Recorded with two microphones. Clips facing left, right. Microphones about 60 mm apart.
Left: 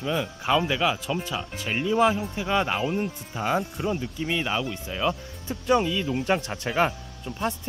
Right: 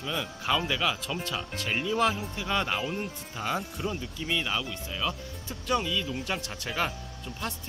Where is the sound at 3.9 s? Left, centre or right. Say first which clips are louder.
Left 5 dB; centre.